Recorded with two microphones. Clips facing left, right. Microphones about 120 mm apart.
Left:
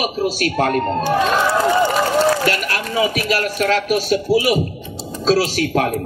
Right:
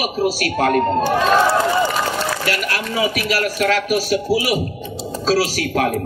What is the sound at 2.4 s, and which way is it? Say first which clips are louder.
A man's voice: left 2 dB; 30° left (ahead or behind).